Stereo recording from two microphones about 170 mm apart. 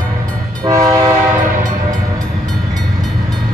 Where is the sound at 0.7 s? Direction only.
20° right (ahead or behind).